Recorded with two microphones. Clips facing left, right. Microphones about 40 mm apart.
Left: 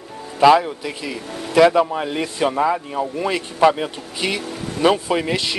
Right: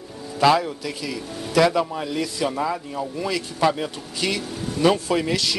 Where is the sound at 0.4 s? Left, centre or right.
Centre.